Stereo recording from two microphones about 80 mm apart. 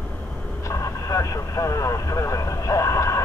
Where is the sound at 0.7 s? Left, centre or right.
Left.